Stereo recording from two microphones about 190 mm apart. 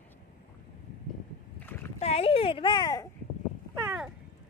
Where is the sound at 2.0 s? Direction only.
30° left (ahead or behind).